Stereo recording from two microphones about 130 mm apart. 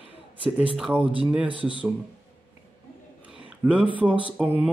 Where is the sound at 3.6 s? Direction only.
10° right (ahead or behind).